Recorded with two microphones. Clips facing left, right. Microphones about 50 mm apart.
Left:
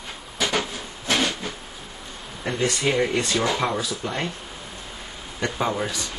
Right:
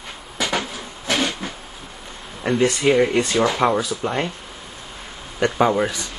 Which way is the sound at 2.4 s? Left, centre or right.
Centre.